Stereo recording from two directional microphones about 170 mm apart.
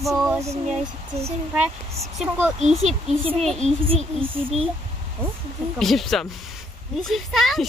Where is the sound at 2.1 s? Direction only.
5° right (ahead or behind).